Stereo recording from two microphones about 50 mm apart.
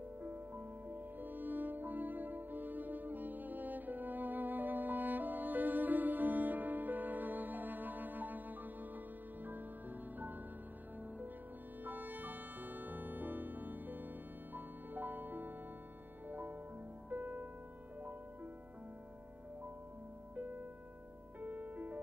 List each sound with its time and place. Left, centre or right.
0.2 s music: right
11.8 s music: right
21.4 s music: right